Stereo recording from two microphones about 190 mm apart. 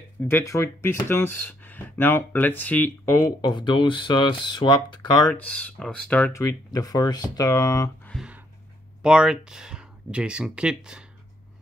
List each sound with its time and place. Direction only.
0.3 s speech: 15° left (ahead or behind)
5.2 s speech: 5° left (ahead or behind)
8.1 s a sound: 5° right (ahead or behind)
9.0 s speech: 5° right (ahead or behind)